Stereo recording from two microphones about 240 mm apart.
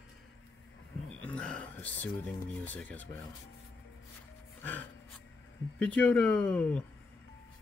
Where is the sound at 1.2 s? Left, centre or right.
Centre.